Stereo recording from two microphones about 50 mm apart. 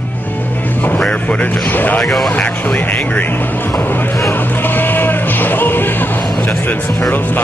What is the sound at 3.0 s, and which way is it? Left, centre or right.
Speech, left.